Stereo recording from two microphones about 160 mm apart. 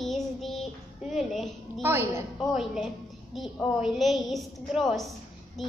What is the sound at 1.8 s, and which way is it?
Speech, 15° right (ahead or behind).